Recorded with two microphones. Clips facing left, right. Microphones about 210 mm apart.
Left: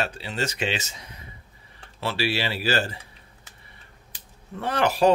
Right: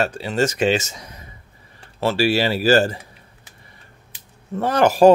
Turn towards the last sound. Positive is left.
turn(degrees=-45)  # may be behind; listen again after turning